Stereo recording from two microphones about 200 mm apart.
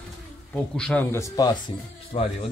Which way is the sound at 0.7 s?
5° left (ahead or behind).